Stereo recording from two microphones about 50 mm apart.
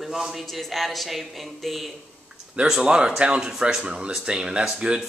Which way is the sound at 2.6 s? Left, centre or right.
Centre.